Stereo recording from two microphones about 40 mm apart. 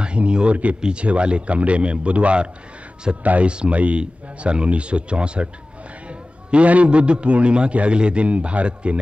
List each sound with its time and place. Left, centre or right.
0.0 s a man's voice: right